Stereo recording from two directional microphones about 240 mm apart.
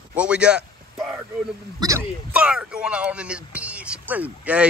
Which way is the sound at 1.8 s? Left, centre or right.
Centre.